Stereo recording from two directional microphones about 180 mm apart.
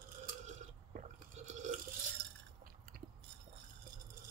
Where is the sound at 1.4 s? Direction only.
40° right (ahead or behind).